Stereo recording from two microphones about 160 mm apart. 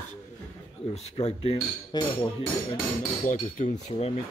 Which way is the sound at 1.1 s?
40° left (ahead or behind).